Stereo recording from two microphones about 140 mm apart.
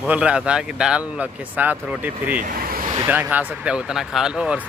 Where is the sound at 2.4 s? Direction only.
80° right.